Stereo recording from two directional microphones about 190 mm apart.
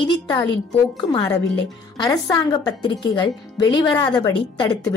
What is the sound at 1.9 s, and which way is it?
A woman's voice, 20° left (ahead or behind).